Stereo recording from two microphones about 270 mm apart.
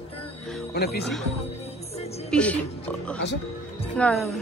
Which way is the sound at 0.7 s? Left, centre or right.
Left.